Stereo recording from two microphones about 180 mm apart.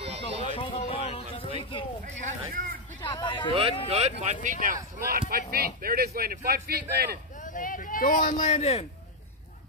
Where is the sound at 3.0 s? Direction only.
25° left (ahead or behind).